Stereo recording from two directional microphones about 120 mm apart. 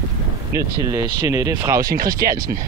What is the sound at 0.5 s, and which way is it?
Speech, 25° right (ahead or behind).